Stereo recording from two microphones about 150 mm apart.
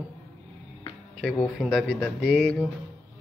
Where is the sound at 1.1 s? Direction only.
Centre (ahead or behind).